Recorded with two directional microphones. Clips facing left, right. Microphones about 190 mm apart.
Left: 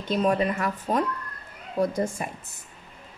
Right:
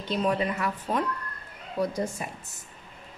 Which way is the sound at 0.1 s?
45° left (ahead or behind).